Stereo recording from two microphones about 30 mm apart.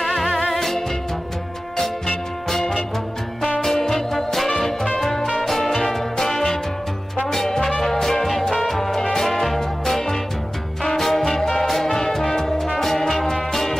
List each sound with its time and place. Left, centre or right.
0.0 s music: centre
3.6 s music: centre